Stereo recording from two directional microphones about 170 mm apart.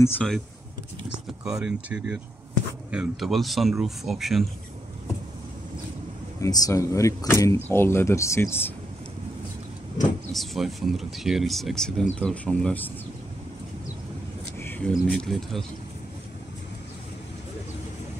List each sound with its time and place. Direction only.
1.4 s speech: 5° right (ahead or behind)
6.4 s speech: 20° left (ahead or behind)
10.3 s speech: centre (ahead or behind)
14.6 s speech: 10° left (ahead or behind)